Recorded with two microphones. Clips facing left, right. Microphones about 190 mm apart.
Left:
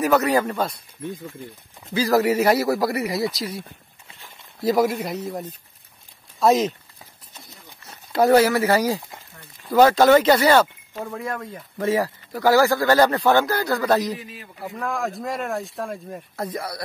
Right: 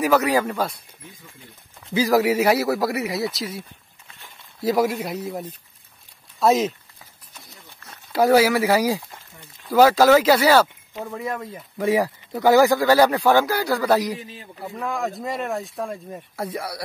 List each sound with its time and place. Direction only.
0.0 s speech: 10° right (ahead or behind)
2.0 s speech: 10° right (ahead or behind)
8.1 s speech: 5° right (ahead or behind)
11.8 s speech: 15° right (ahead or behind)
14.1 s a man's voice: 30° right (ahead or behind)
14.6 s speech: centre (ahead or behind)